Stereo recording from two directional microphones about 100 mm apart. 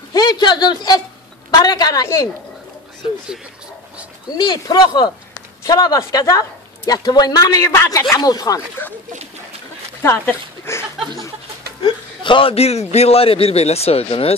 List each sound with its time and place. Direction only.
0.1 s a sound: 45° left (ahead or behind)
1.5 s speech: 45° left (ahead or behind)
4.4 s speech: 45° left (ahead or behind)
8.5 s speech: 20° left (ahead or behind)
10.0 s speech: 25° left (ahead or behind)
11.8 s a man's voice: 55° left (ahead or behind); by 14.3 s 75° left (ahead or behind)